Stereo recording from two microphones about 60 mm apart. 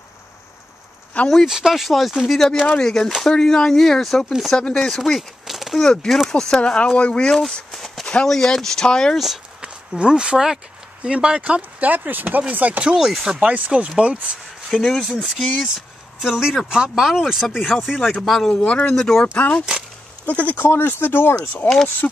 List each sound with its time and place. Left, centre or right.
1.4 s speech: centre
4.7 s speech: centre
7.7 s a sound: centre
8.1 s speech: centre
9.6 s speech: centre
12.9 s speech: centre
13.4 s speech: right
14.7 s speech: centre
15.0 s speech: centre
18.6 s speech: left
18.9 s speech: centre
19.3 s speech: left